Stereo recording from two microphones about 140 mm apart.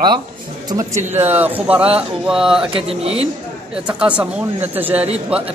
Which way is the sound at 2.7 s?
45° right (ahead or behind).